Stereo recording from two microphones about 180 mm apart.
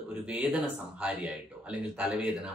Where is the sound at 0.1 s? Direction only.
5° right (ahead or behind).